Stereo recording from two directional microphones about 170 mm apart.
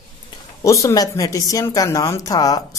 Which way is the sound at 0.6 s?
20° left (ahead or behind).